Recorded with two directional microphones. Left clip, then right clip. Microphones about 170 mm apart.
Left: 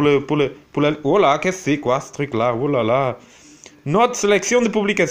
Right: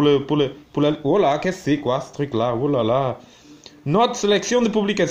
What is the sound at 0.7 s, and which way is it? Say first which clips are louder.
Speech: left 2 dB; 15° left (ahead or behind).